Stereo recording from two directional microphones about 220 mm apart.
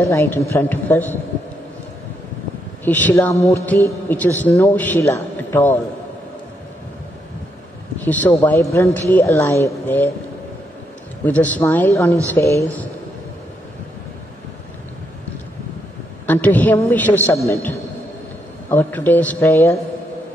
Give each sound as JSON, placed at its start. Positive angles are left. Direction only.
{"t": 0.0, "sound": "a man's voice", "side_deg": 15}
{"t": 3.1, "sound": "a man's voice", "side_deg": 10}
{"t": 8.0, "sound": "a man's voice", "side_deg": 10}
{"t": 11.2, "sound": "a man's voice", "side_deg": 5}
{"t": 16.3, "sound": "a man's voice", "side_deg": 5}